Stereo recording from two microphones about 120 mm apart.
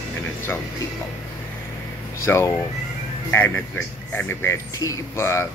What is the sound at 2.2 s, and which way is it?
Speech, 25° left (ahead or behind).